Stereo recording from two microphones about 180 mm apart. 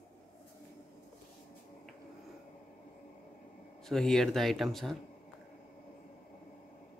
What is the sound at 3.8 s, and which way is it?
Speech, centre (ahead or behind).